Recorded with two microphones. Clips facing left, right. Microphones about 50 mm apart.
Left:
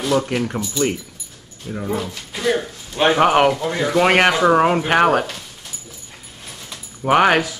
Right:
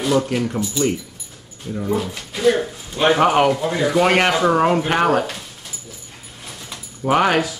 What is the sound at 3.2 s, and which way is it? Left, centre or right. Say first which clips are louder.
Speech: left 2 dB; centre.